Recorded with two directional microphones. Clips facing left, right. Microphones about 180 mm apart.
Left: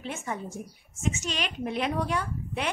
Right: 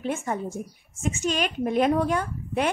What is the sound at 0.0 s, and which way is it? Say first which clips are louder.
A woman's voice: right 6 dB; 50° right (ahead or behind).